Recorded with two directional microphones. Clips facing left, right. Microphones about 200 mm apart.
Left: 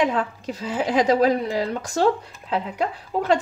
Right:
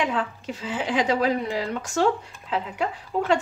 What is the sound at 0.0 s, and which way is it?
Speech, 40° left (ahead or behind).